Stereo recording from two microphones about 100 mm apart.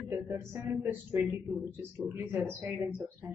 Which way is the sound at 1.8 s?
25° right (ahead or behind).